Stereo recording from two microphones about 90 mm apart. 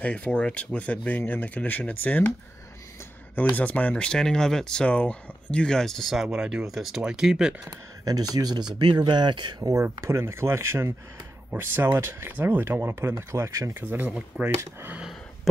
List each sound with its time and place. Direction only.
0.0 s speech: 15° left (ahead or behind)
3.5 s speech: 15° left (ahead or behind)
6.2 s speech: 5° right (ahead or behind)
8.0 s speech: 45° right (ahead or behind)
9.6 s speech: 35° right (ahead or behind)
13.7 s speech: 20° right (ahead or behind)